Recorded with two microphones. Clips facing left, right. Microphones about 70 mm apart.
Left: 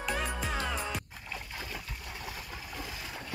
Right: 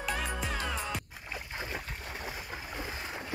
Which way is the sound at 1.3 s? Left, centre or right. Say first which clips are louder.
Right 3 dB; right.